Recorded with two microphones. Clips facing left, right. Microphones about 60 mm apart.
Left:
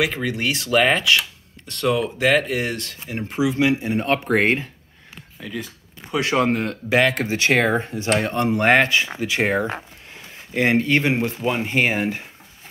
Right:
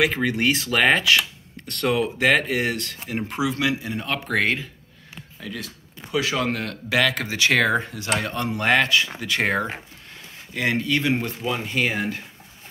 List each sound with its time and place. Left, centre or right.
0.0 s speech: centre
3.1 s speech: centre
3.8 s speech: left
5.4 s speech: centre
6.3 s speech: left
10.5 s speech: left